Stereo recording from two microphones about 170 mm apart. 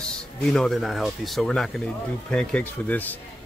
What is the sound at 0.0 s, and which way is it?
Speech, 5° left (ahead or behind).